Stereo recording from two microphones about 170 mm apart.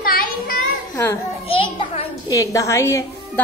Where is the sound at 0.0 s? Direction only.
55° left (ahead or behind).